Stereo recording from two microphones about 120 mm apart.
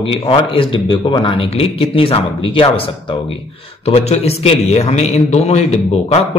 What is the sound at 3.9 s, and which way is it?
A man's voice, 60° left (ahead or behind).